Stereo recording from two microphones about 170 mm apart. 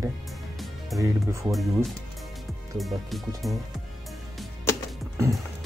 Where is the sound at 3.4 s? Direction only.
Centre (ahead or behind).